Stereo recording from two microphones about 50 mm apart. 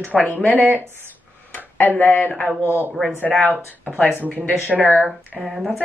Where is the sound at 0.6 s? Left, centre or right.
Right.